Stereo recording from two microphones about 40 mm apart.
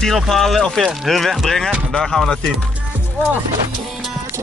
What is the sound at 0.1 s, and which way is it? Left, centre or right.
Speech, centre.